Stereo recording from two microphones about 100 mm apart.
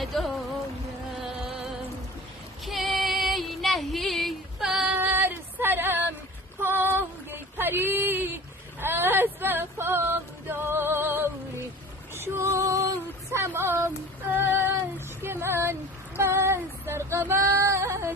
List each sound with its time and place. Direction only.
0.0 s music: centre (ahead or behind)
2.6 s female singing: centre (ahead or behind)
5.0 s a sound: 20° right (ahead or behind)
8.8 s female singing: 20° right (ahead or behind)